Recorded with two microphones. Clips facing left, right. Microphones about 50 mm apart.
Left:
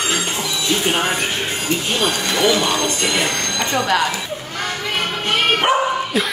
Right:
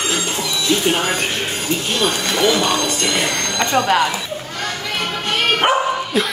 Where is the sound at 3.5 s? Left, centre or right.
Right.